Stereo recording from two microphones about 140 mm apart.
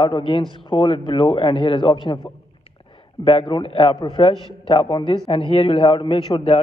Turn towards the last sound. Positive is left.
turn(degrees=45)  # may be behind; listen again after turning